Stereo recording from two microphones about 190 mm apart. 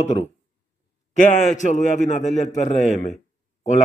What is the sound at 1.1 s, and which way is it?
A man's voice, 40° left (ahead or behind).